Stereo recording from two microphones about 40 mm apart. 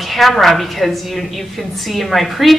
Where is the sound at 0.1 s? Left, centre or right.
Centre.